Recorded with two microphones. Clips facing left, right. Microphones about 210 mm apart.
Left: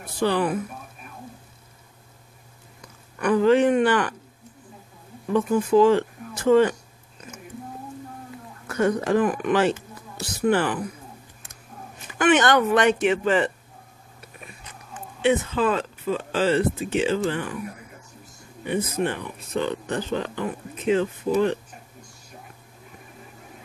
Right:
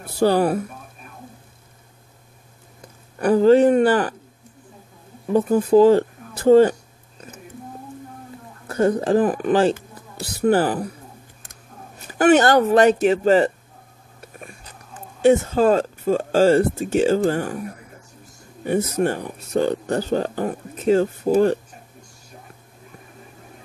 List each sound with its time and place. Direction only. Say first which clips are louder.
0.2 s speech: right 5 dB; 40° right (ahead or behind)
3.2 s speech: right 4 dB; 35° right (ahead or behind)
5.3 s speech: right 4 dB; 35° right (ahead or behind)
8.6 s speech: right 3 dB; 30° right (ahead or behind)
12.0 s speech: right 5 dB; 40° right (ahead or behind)